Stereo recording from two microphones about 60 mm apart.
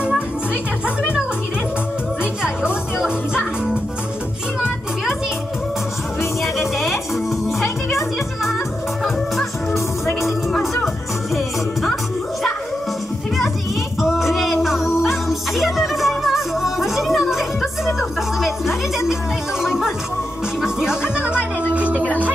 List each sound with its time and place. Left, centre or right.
2.4 s music: centre
10.2 s music: centre
14.0 s music: centre
19.6 s music: centre
21.0 s music: centre